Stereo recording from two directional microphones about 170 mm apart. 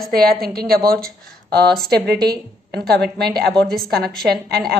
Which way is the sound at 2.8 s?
75° right (ahead or behind).